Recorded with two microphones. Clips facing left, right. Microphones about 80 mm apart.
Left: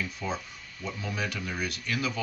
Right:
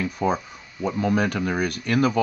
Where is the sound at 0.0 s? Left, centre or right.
Right.